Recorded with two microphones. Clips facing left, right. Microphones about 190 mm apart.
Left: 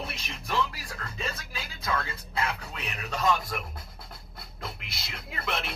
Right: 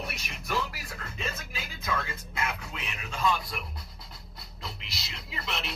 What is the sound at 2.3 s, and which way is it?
Speech, 35° left (ahead or behind).